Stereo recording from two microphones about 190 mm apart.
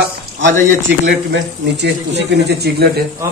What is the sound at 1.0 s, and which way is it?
Speech, 65° right (ahead or behind).